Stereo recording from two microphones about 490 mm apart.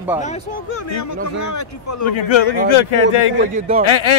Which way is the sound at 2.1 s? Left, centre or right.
Left.